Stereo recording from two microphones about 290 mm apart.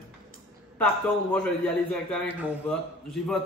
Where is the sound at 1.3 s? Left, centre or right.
Centre.